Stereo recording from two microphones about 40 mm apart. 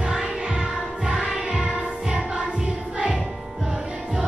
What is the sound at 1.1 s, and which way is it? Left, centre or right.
Music, centre.